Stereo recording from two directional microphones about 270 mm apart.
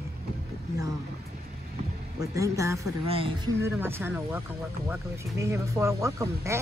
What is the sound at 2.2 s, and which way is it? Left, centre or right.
Speech, centre.